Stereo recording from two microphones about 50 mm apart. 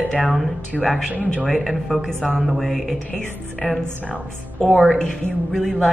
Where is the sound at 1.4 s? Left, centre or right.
Centre.